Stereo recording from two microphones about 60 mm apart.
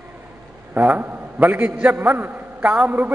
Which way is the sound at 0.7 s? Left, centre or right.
Right.